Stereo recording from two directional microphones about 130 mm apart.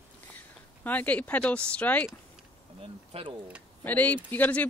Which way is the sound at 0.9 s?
10° left (ahead or behind).